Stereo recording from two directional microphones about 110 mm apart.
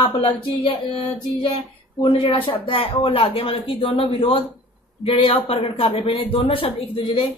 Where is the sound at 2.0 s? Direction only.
50° left (ahead or behind).